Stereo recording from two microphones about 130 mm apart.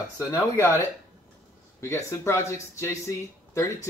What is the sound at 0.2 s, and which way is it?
Speech, 20° left (ahead or behind).